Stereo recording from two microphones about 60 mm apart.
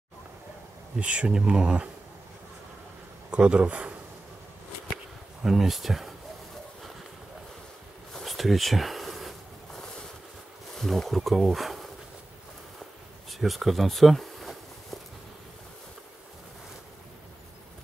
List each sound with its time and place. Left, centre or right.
0.9 s speech: centre
3.3 s speech: centre
5.4 s speech: centre
8.1 s a sound: centre
10.8 s speech: centre
13.3 s a sound: centre